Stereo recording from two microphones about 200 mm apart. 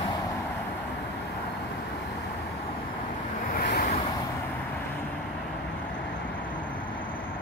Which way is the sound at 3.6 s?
50° left (ahead or behind).